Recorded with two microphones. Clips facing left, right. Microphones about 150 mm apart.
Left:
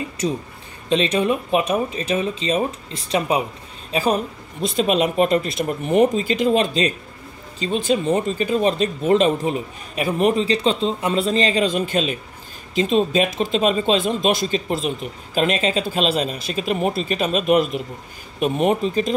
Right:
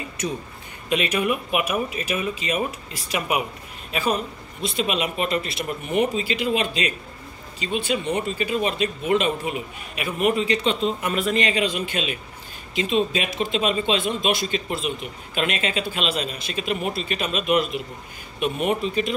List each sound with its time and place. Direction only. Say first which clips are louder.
1.1 s a man's voice: left 4 dB; 30° left (ahead or behind)